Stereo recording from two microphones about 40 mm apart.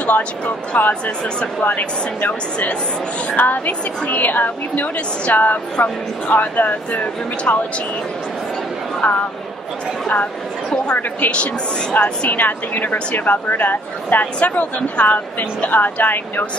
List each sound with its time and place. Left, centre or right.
0.7 s speech: left
9.0 s a woman's voice: left
11.2 s a woman's voice: left
12.2 s speech: left